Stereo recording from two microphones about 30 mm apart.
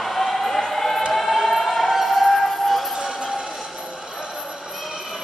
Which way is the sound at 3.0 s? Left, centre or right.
Right.